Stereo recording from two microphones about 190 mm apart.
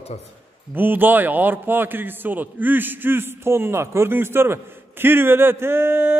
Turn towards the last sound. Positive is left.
turn(degrees=-10)  # may be behind; listen again after turning